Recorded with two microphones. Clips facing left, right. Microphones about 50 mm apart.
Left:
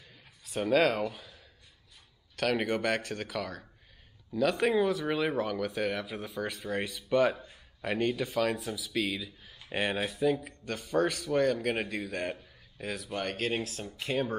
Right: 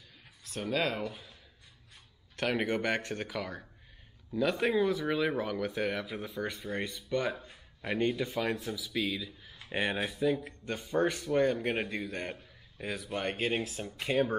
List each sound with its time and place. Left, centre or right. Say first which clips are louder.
0.5 s speech: left 6 dB; centre
2.5 s speech: left 1 dB; centre
4.7 s speech: left 1 dB; centre
7.3 s a sound: even; centre
8.3 s speech: left 3 dB; centre
10.7 s speech: left 1 dB; centre
11.7 s speech: left 1 dB; centre
12.8 s speech: even; centre